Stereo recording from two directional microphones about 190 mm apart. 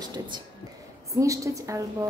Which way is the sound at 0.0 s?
20° right (ahead or behind).